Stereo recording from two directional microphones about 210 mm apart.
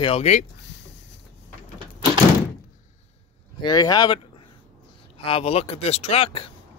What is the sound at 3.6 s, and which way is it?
Speech, 20° left (ahead or behind).